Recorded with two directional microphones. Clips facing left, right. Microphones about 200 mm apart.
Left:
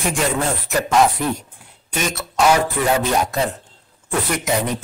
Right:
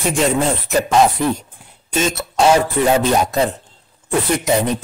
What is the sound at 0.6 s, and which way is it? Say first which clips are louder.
Speech: right 4 dB; 25° right (ahead or behind).